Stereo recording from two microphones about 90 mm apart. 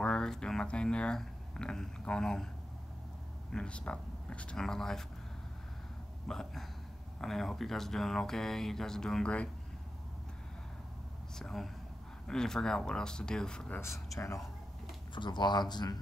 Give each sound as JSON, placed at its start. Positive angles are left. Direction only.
{"t": 0.0, "sound": "speech", "side_deg": 10}
{"t": 3.5, "sound": "speech", "side_deg": 10}
{"t": 6.2, "sound": "speech", "side_deg": 5}
{"t": 11.3, "sound": "speech", "side_deg": 5}
{"t": 13.7, "sound": "speech", "side_deg": 30}
{"t": 15.1, "sound": "speech", "side_deg": 55}